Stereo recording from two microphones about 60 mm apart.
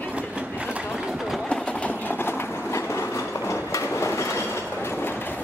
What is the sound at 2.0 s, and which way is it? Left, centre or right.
Train, left.